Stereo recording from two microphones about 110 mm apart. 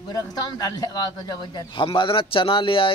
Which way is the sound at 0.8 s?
40° left (ahead or behind).